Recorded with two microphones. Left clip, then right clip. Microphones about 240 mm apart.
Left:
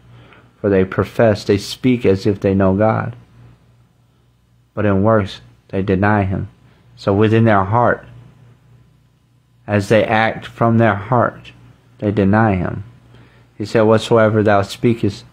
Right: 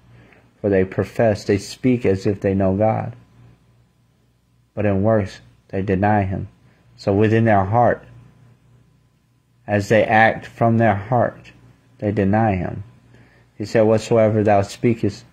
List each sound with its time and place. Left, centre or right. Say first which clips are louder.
0.3 s speech: left 3 dB; centre
4.7 s speech: left 4 dB; centre
9.7 s speech: left 2 dB; centre